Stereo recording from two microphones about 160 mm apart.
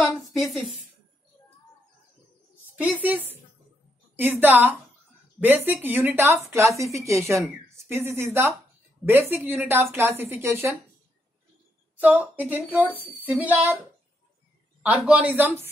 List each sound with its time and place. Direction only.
0.0 s a woman's voice: centre (ahead or behind)
2.8 s a woman's voice: 10° right (ahead or behind)
12.0 s a woman's voice: 10° right (ahead or behind)
14.8 s a woman's voice: 10° right (ahead or behind)